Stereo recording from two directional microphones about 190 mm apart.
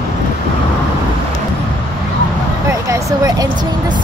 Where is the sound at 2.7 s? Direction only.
15° right (ahead or behind).